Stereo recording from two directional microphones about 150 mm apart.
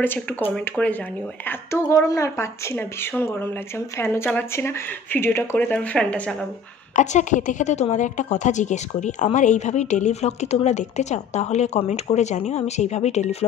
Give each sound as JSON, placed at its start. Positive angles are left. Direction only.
{"t": 0.0, "sound": "speech", "side_deg": 10}
{"t": 7.0, "sound": "a woman's voice", "side_deg": 55}